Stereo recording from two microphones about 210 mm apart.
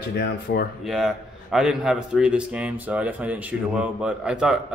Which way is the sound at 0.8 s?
Centre (ahead or behind).